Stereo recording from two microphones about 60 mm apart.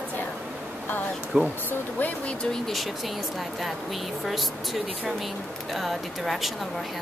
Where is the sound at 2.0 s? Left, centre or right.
Centre.